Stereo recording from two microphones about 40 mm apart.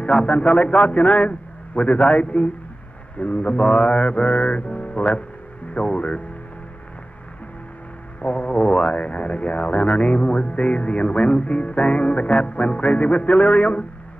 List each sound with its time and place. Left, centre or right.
0.0 s speech: left
8.2 s speech: left